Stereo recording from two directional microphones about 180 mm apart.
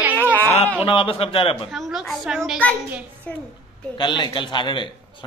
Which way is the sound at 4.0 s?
25° left (ahead or behind).